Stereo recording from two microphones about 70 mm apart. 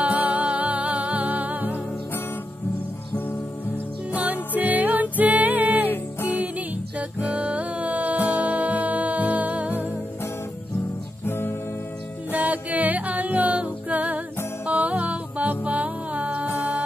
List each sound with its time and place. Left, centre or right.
0.0 s music: right
4.1 s music: right
7.0 s music: right
11.2 s music: left
12.3 s music: right